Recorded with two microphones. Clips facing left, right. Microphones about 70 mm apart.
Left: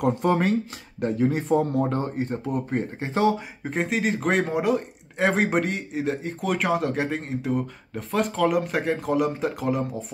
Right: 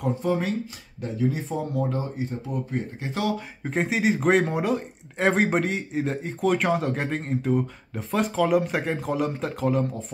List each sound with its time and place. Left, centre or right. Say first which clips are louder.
0.0 s speech: left 3 dB; left
3.0 s speech: left 6 dB; left
3.6 s speech: right 1 dB; centre